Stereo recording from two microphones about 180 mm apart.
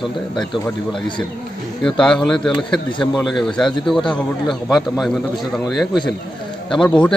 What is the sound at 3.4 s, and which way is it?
A man's voice, 5° left (ahead or behind).